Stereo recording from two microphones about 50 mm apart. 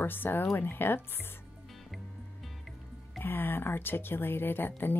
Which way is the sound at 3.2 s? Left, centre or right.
Left.